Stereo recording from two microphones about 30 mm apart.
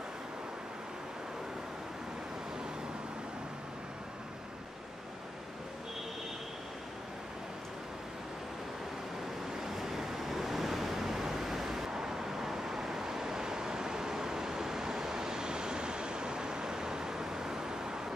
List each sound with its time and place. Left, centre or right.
9.5 s waves: centre